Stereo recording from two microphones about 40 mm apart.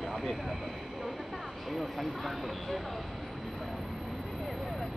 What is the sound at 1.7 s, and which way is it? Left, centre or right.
Speech, centre.